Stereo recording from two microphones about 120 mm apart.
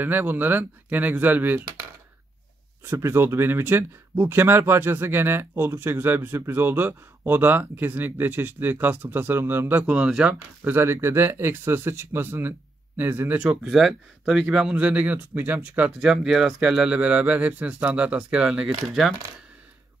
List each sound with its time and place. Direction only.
0.0 s speech: 15° right (ahead or behind)
2.8 s speech: 20° right (ahead or behind); by 19.1 s 5° right (ahead or behind)